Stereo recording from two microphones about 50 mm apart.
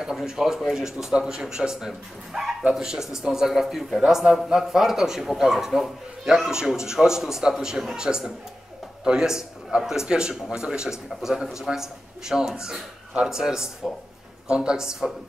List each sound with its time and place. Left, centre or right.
0.0 s speech: centre
1.9 s a man's voice: centre